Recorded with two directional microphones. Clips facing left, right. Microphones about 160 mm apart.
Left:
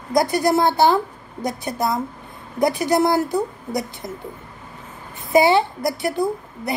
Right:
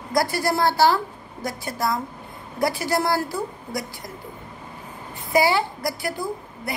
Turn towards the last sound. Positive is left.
turn(degrees=20)  # may be behind; listen again after turning